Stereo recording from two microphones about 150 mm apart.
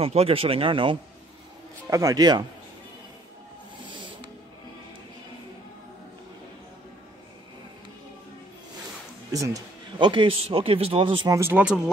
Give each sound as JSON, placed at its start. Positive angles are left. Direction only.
{"t": 0.0, "sound": "a man's voice", "side_deg": -40}
{"t": 1.9, "sound": "speech", "side_deg": -25}
{"t": 3.9, "sound": "a sound", "side_deg": -35}
{"t": 9.3, "sound": "a man's voice", "side_deg": -25}
{"t": 11.2, "sound": "speech", "side_deg": -20}
{"t": 11.5, "sound": "speech", "side_deg": -5}